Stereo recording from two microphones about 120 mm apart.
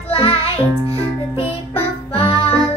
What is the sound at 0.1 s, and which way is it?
Music, 55° left (ahead or behind).